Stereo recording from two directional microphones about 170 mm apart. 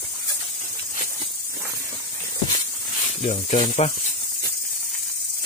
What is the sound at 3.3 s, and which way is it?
Speech, 40° left (ahead or behind).